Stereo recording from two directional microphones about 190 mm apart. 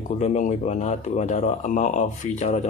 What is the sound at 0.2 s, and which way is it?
Speech, 40° left (ahead or behind).